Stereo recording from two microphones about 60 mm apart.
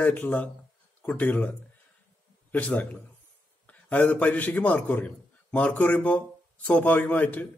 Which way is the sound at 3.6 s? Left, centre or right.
Left.